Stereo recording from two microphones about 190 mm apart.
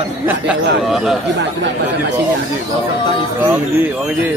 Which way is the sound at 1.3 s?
65° right (ahead or behind).